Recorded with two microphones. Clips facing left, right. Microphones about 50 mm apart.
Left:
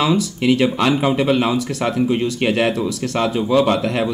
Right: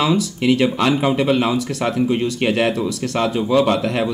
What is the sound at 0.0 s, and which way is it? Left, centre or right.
Speech, centre.